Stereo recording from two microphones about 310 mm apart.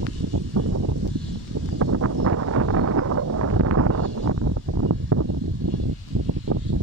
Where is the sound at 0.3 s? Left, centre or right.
Right.